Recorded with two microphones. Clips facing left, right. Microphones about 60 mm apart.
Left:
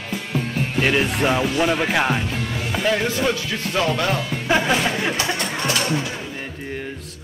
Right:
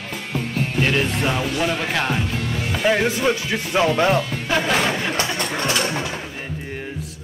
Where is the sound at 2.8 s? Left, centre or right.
Centre.